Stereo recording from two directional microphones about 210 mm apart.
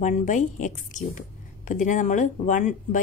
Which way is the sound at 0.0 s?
35° left (ahead or behind).